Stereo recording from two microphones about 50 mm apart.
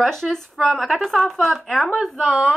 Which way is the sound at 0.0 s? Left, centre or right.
Centre.